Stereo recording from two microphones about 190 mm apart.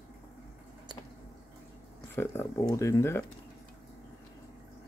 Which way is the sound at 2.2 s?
15° left (ahead or behind).